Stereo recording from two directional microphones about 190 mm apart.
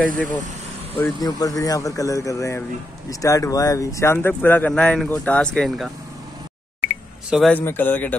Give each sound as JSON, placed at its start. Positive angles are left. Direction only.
{"t": 0.0, "sound": "speech", "side_deg": 10}
{"t": 1.2, "sound": "speech", "side_deg": 20}
{"t": 7.2, "sound": "speech", "side_deg": 0}